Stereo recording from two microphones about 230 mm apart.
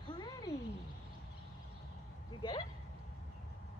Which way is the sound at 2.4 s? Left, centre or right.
Centre.